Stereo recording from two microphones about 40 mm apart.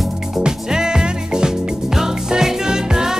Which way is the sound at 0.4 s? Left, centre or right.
Centre.